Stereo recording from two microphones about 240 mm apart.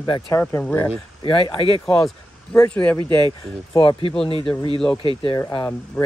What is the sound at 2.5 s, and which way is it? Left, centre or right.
Speech, centre.